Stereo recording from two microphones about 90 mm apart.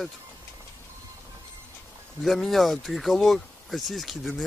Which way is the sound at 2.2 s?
Centre (ahead or behind).